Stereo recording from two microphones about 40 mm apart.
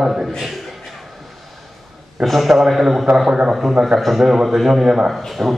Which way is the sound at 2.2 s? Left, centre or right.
Centre.